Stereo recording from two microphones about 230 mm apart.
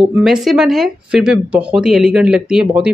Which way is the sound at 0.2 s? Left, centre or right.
Centre.